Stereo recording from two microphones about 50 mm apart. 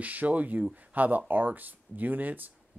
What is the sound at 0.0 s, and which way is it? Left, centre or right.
Speech, right.